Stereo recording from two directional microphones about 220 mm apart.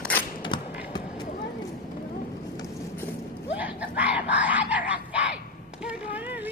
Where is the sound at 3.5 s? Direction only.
5° right (ahead or behind).